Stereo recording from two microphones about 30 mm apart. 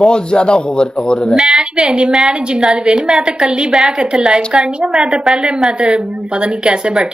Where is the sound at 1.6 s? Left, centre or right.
Right.